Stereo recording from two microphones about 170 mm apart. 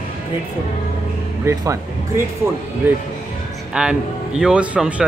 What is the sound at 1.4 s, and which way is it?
Speech, 20° right (ahead or behind).